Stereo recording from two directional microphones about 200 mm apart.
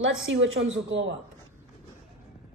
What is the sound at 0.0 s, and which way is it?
A woman's voice, 75° right (ahead or behind).